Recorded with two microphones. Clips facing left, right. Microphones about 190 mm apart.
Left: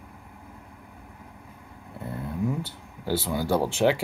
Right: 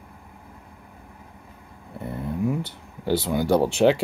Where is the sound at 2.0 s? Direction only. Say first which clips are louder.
Right 3 dB; 15° right (ahead or behind).